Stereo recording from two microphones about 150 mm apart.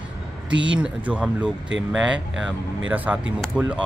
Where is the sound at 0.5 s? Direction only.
30° right (ahead or behind).